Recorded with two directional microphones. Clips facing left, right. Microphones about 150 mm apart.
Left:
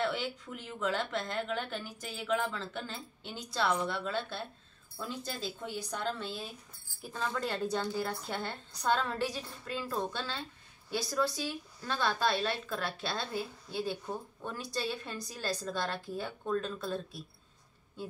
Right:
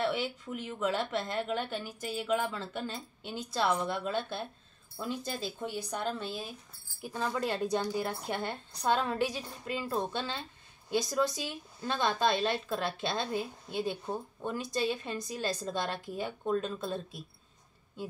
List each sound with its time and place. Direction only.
0.0 s a woman's voice: 5° right (ahead or behind); by 17.2 s 20° right (ahead or behind)